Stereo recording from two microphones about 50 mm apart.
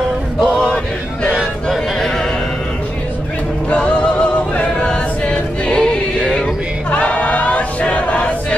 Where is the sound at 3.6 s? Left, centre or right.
Left.